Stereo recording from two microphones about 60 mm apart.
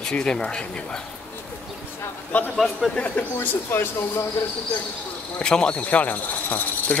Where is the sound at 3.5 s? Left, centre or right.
Left.